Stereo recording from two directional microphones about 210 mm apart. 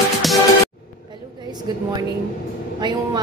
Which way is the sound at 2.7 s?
20° right (ahead or behind).